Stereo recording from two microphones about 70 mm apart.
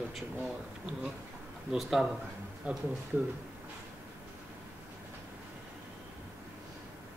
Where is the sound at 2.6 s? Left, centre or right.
Centre.